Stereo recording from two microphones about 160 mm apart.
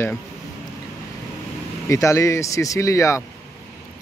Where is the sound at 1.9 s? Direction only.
20° left (ahead or behind).